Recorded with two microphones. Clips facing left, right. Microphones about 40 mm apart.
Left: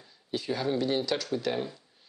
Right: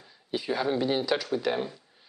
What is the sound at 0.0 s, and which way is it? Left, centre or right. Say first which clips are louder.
Speech: right 2 dB; centre.